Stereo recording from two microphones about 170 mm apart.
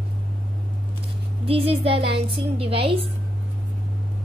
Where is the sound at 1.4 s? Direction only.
35° right (ahead or behind).